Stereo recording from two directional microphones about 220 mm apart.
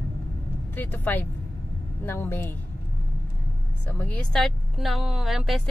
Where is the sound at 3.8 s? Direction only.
10° left (ahead or behind).